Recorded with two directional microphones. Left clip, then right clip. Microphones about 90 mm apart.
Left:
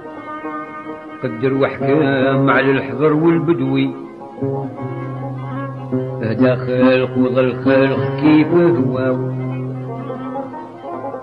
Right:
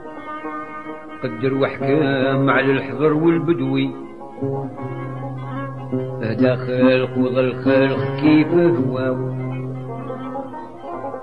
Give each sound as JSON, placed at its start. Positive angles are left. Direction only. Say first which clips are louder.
{"t": 1.2, "sound": "mantra", "louder": "left 3 dB", "side_deg": -15}
{"t": 2.8, "sound": "a man's voice", "louder": "left 3 dB", "side_deg": -5}
{"t": 6.5, "sound": "mantra", "louder": "left 2 dB", "side_deg": -5}
{"t": 10.0, "sound": "music", "louder": "left 3 dB", "side_deg": -10}